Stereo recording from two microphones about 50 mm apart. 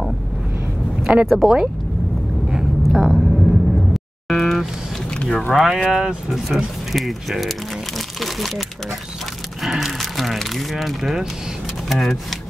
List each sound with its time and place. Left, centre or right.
1.2 s speech: centre
2.9 s a sound: centre
5.1 s a sound: centre
5.5 s speech: centre
8.2 s crumpling: centre
9.6 s speech: centre